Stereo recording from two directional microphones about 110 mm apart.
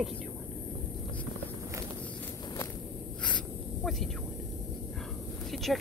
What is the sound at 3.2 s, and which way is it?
Snake, 5° left (ahead or behind).